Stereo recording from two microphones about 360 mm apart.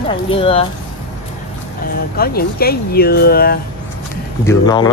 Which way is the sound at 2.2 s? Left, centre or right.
Left.